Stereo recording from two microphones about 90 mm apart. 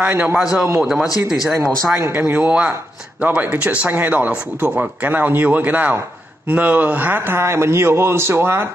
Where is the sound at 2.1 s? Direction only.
15° right (ahead or behind).